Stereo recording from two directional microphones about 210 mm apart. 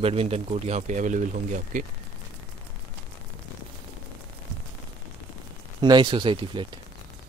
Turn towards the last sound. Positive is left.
turn(degrees=-25)  # may be behind; listen again after turning